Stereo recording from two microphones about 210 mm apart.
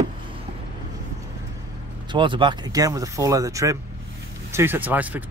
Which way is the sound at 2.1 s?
25° right (ahead or behind).